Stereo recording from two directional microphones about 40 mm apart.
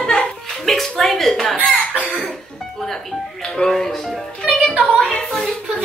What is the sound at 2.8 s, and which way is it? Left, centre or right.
Speech, centre.